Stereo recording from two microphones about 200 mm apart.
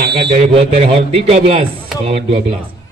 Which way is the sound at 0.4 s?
30° right (ahead or behind).